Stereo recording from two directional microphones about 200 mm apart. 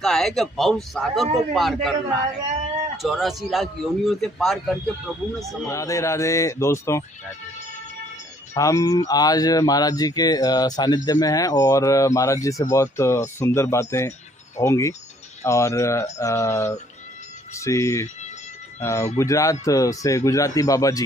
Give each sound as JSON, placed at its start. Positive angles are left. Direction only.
{"t": 0.0, "sound": "a man's voice", "side_deg": 0}
{"t": 3.0, "sound": "a man's voice", "side_deg": 0}
{"t": 5.7, "sound": "speech", "side_deg": 15}
{"t": 8.5, "sound": "speech", "side_deg": 15}